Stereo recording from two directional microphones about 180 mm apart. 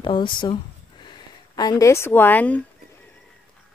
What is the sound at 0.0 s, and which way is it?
Speech, 25° left (ahead or behind).